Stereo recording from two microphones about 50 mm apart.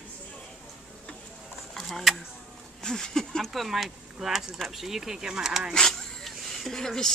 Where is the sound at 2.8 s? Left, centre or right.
Centre.